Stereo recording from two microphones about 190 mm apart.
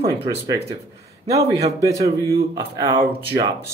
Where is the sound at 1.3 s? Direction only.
15° right (ahead or behind).